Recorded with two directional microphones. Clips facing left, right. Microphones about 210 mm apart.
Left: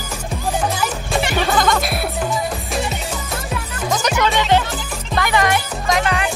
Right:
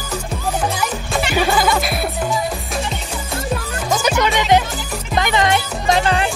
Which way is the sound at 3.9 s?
Centre (ahead or behind).